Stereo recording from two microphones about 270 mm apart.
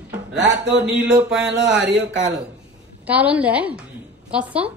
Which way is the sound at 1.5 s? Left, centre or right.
Right.